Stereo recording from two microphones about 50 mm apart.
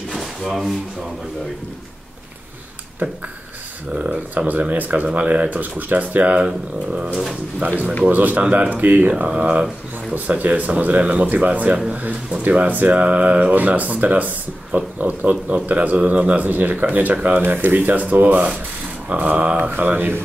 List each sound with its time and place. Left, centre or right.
0.1 s drawer open or close: centre
3.0 s speech: right
3.9 s speech: right
4.5 s speech: right
6.2 s speech: right
7.1 s speech: centre
7.6 s speech: right
10.1 s speech: right
19.7 s speech: right